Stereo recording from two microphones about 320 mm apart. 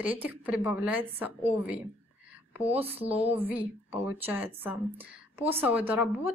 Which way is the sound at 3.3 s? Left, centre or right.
Centre.